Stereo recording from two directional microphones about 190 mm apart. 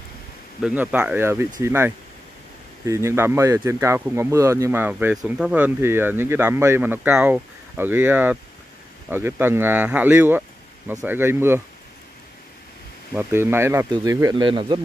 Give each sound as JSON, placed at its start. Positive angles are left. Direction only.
{"t": 0.6, "sound": "speech", "side_deg": -5}
{"t": 13.1, "sound": "a man's voice", "side_deg": -10}